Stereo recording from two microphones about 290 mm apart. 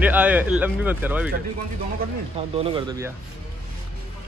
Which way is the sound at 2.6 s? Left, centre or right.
Centre.